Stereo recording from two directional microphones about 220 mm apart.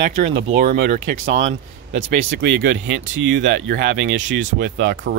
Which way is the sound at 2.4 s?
55° right (ahead or behind).